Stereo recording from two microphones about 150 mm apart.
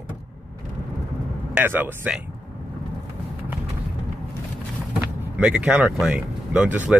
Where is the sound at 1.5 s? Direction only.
10° right (ahead or behind).